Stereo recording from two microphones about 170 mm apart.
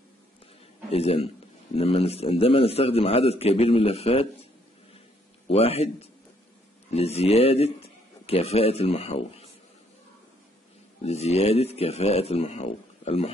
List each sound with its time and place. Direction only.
0.9 s a man's voice: 35° left (ahead or behind)
5.5 s a man's voice: 35° left (ahead or behind)
6.9 s a man's voice: 40° left (ahead or behind)
11.0 s a man's voice: 40° left (ahead or behind)